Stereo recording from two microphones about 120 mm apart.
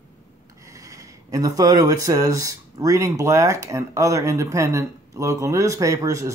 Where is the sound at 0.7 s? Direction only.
25° right (ahead or behind).